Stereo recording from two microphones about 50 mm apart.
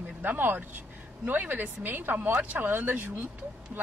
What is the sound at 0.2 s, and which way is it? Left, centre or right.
A woman's voice, right.